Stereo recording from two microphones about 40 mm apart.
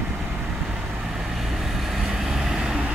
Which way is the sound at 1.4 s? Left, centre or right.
Centre.